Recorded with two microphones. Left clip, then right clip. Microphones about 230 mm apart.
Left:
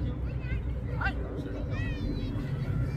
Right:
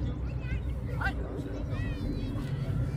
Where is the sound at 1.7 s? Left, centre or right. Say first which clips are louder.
Left 1 dB; left.